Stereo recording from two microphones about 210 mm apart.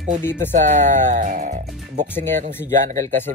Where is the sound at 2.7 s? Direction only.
35° right (ahead or behind).